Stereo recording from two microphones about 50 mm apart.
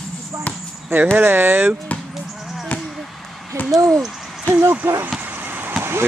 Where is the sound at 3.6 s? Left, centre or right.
Left.